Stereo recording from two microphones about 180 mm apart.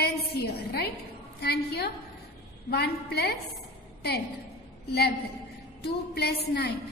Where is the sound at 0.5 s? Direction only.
60° left (ahead or behind).